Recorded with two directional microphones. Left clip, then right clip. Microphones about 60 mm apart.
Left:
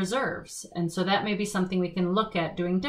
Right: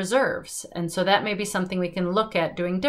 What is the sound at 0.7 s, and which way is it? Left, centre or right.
Speech, right.